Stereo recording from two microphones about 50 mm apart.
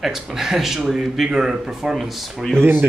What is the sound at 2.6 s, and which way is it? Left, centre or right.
Speech, right.